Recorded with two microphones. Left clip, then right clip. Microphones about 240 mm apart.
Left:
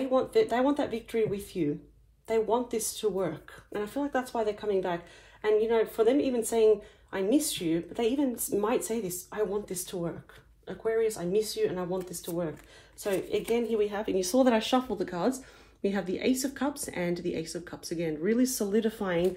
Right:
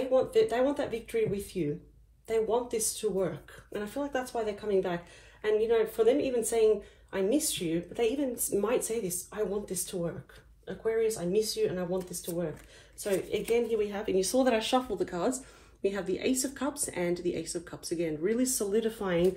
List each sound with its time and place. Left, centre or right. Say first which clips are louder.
0.1 s speech: even; left
13.0 s speech: left 1 dB; left